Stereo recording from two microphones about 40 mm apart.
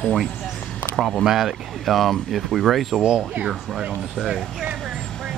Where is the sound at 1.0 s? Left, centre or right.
Centre.